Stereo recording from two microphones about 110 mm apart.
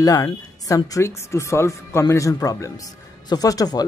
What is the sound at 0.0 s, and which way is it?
Speech, 30° left (ahead or behind).